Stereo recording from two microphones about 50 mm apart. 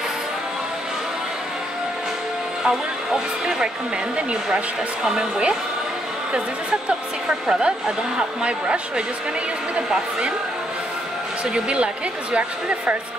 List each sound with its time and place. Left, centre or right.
2.6 s a woman's voice: centre
6.9 s a woman's voice: centre
11.5 s speech: right